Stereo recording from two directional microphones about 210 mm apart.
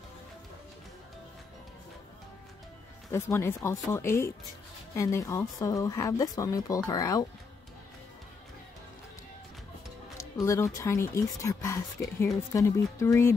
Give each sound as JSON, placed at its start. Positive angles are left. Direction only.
{"t": 3.1, "sound": "speech", "side_deg": 10}
{"t": 10.4, "sound": "speech", "side_deg": 15}